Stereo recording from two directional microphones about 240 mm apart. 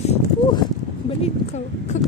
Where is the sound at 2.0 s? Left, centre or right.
Left.